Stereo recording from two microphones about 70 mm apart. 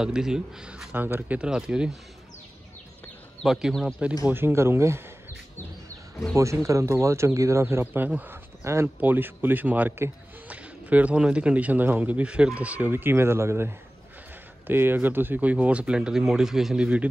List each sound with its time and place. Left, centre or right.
0.0 s speech: centre
0.9 s speech: right
1.4 s speech: centre
3.4 s speech: centre
4.3 s speech: right
6.3 s speech: right
8.3 s a sound: right
9.0 s speech: right
12.9 s speech: right; by 17.1 s centre